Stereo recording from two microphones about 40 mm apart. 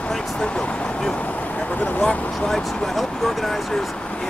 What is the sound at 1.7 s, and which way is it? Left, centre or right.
Speech, left.